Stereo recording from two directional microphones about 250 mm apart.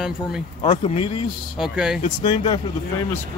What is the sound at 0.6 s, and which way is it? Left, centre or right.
Speech, left.